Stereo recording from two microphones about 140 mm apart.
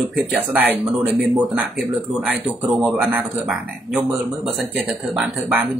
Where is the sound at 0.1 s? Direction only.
5° right (ahead or behind).